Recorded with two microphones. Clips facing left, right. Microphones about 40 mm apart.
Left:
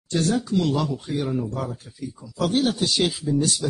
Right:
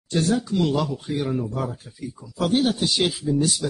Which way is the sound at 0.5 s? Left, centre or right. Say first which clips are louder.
Even; centre.